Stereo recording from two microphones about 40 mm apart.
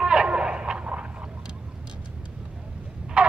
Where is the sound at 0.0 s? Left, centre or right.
Right.